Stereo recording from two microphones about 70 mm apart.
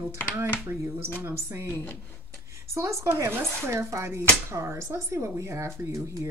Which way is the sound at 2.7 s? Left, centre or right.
Right.